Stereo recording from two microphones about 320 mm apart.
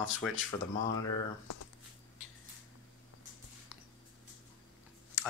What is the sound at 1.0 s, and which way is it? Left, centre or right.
Speech, left.